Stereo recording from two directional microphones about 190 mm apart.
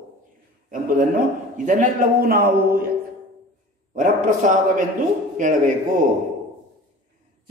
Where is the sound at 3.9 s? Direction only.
45° right (ahead or behind).